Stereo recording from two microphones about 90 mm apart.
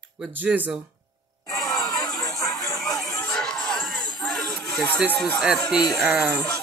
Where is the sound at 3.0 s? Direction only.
10° left (ahead or behind).